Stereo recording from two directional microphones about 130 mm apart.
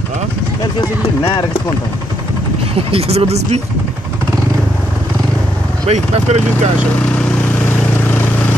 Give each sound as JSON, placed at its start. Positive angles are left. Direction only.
{"t": 0.7, "sound": "speech", "side_deg": 40}
{"t": 2.9, "sound": "speech", "side_deg": -50}
{"t": 5.9, "sound": "speech", "side_deg": -55}